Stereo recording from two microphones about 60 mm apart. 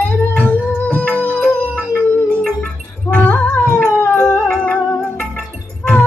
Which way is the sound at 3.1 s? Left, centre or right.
Left.